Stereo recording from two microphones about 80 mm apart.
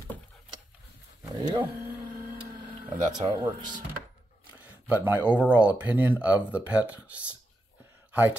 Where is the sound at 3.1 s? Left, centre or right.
Right.